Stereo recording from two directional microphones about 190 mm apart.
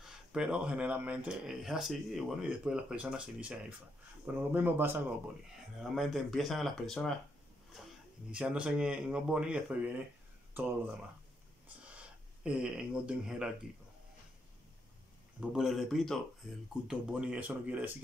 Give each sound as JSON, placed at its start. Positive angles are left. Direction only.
{"t": 0.0, "sound": "speech", "side_deg": -5}
{"t": 5.8, "sound": "speech", "side_deg": 0}
{"t": 8.3, "sound": "speech", "side_deg": -5}
{"t": 11.6, "sound": "a sound", "side_deg": -5}
{"t": 12.4, "sound": "speech", "side_deg": -5}
{"t": 15.5, "sound": "speech", "side_deg": 0}